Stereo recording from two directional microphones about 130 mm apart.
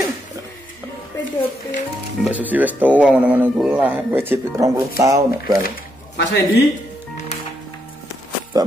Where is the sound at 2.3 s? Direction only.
10° right (ahead or behind).